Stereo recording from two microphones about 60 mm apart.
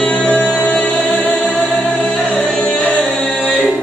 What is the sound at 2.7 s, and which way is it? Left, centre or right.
Music, left.